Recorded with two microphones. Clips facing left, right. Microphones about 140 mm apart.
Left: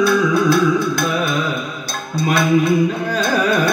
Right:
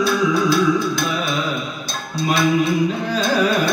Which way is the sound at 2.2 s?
55° left (ahead or behind).